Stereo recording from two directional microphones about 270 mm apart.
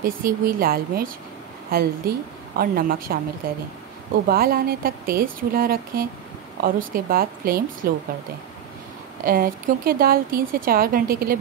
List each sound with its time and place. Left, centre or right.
0.0 s speech: right
9.2 s speech: right